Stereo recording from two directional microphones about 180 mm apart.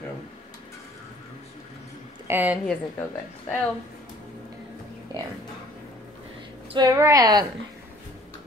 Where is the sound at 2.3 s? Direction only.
10° right (ahead or behind).